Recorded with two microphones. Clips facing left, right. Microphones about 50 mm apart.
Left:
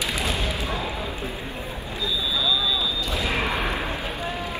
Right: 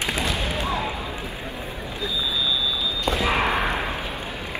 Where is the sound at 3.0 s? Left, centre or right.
Right.